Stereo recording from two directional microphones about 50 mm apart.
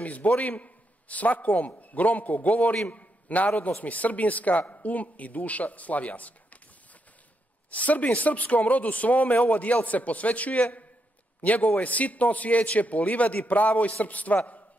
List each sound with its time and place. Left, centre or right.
0.0 s a man's voice: left
7.7 s speech: left